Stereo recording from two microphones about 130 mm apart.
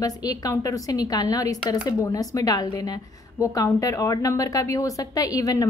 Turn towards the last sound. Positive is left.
turn(degrees=25)  # may be behind; listen again after turning